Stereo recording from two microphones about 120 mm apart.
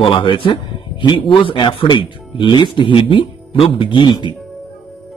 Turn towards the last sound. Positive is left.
turn(degrees=40)  # may be behind; listen again after turning